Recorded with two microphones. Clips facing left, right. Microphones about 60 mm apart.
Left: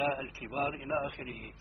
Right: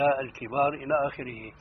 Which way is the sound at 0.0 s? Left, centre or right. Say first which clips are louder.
Right 8 dB; right.